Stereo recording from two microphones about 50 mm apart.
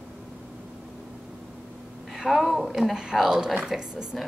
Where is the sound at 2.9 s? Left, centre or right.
Centre.